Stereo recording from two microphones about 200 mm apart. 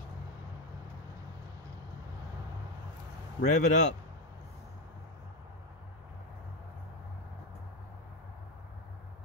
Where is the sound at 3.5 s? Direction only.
35° left (ahead or behind).